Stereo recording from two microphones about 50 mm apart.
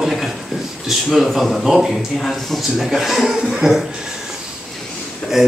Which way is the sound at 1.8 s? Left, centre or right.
Centre.